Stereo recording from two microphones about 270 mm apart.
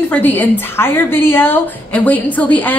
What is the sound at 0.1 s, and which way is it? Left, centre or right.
A woman's voice, centre.